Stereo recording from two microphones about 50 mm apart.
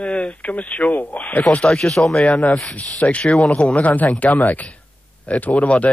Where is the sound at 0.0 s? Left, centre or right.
Left.